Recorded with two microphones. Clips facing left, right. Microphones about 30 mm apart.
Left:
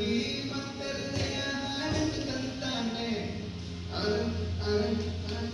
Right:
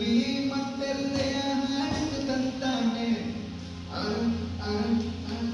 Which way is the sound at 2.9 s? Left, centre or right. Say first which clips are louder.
Right 4 dB; centre.